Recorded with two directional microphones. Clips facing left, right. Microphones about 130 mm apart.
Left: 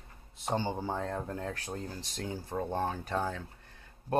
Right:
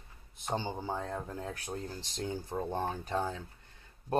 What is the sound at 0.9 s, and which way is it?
Speech, 5° right (ahead or behind).